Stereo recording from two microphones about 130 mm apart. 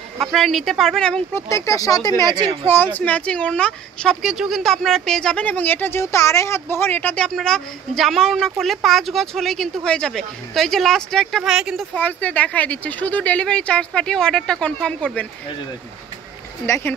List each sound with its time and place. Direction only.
0.2 s speech: centre (ahead or behind)
1.3 s speech: 25° left (ahead or behind)
2.1 s speech: 35° right (ahead or behind)
2.7 s speech: 15° left (ahead or behind); by 12.0 s 5° right (ahead or behind)
12.0 s speech: 10° left (ahead or behind)
16.6 s speech: 20° left (ahead or behind)